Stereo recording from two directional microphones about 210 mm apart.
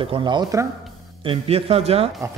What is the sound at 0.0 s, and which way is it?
Speech, 25° right (ahead or behind).